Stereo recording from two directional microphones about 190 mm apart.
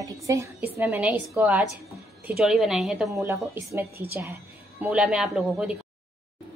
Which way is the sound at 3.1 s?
15° right (ahead or behind).